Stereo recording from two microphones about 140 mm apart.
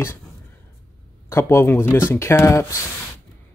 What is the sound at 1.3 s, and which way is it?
Speech, 20° left (ahead or behind).